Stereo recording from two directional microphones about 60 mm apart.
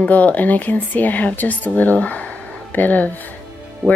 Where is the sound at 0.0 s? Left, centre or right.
Left.